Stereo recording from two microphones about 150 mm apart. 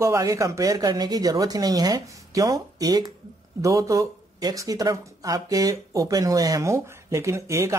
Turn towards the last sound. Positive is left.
turn(degrees=-20)  # may be behind; listen again after turning